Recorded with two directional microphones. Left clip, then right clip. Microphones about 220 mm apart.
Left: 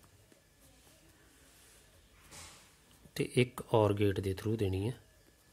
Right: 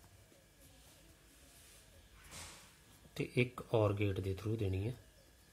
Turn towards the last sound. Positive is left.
turn(degrees=40)  # may be behind; listen again after turning